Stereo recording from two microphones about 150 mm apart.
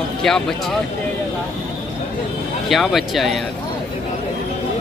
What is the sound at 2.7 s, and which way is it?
Speech, centre (ahead or behind).